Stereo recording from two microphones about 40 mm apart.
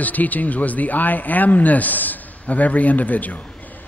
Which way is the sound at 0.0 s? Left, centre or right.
Left.